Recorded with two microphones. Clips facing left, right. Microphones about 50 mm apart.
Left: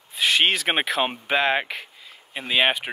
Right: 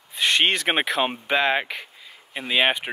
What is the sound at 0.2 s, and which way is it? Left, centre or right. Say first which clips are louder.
Speech: even; centre.